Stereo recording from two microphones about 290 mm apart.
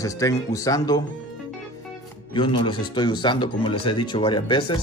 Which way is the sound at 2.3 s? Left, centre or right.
Centre.